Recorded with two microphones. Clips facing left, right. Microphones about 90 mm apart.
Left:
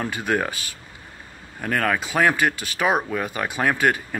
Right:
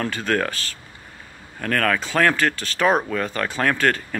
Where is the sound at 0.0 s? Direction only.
15° left (ahead or behind).